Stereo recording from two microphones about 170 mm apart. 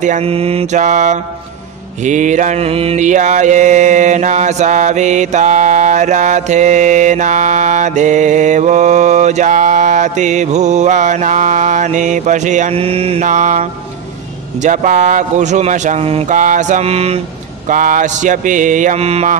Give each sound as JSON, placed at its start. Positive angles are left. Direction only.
{"t": 0.0, "sound": "mantra", "side_deg": -40}
{"t": 16.3, "sound": "mantra", "side_deg": -50}
{"t": 17.6, "sound": "mantra", "side_deg": -50}